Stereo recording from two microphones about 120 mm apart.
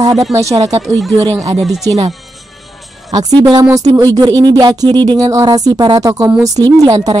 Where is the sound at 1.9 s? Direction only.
30° right (ahead or behind).